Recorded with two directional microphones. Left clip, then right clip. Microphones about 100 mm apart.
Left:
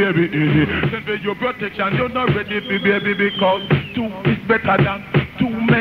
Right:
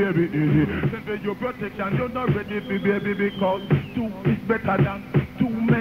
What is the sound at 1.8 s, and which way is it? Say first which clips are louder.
Speech: left 7 dB; 30° right (ahead or behind).